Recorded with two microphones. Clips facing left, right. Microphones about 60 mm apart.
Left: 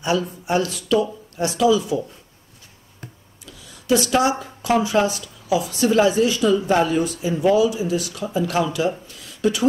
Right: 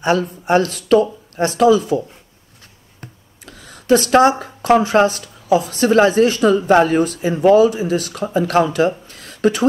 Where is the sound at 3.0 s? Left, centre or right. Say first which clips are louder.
Right 2 dB; right.